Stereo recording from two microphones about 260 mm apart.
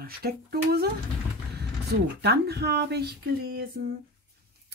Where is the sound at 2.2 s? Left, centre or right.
Right.